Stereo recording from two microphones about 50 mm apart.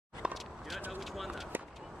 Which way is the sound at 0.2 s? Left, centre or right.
Right.